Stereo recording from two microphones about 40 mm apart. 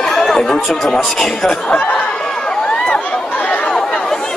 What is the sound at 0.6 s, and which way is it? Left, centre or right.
Speech, centre.